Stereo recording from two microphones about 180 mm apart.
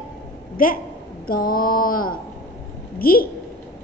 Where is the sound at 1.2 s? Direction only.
55° left (ahead or behind).